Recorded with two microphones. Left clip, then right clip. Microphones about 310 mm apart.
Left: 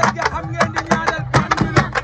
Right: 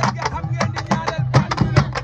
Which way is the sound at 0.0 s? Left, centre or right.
Right.